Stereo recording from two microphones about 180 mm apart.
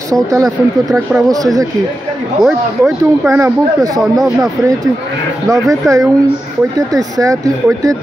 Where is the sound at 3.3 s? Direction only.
15° right (ahead or behind).